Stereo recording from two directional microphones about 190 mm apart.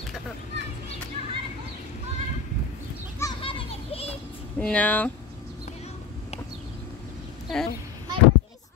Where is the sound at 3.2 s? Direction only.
25° left (ahead or behind).